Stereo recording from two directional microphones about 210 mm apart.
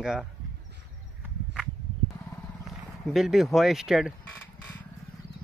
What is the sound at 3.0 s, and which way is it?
Speech, centre (ahead or behind).